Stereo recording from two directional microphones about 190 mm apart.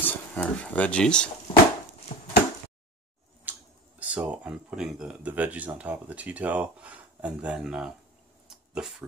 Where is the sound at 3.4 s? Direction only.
10° right (ahead or behind).